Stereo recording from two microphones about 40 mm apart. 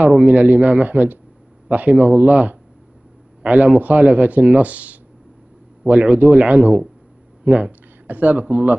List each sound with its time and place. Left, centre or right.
0.0 s speech: right